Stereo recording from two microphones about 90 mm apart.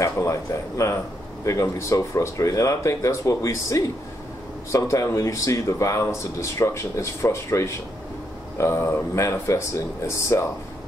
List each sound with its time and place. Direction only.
0.0 s speech: 35° left (ahead or behind)